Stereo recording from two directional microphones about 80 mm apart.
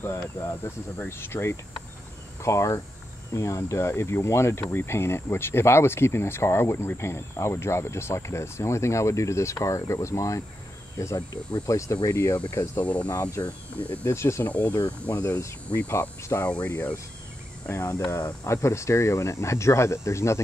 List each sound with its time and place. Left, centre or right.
0.1 s speech: left
11.6 s speech: left
12.7 s speech: centre
14.0 s speech: left
14.5 s speech: centre
17.6 s speech: left